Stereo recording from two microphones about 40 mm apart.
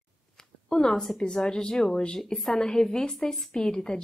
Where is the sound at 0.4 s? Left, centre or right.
Centre.